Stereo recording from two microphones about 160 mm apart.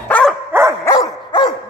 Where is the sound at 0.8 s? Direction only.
25° left (ahead or behind).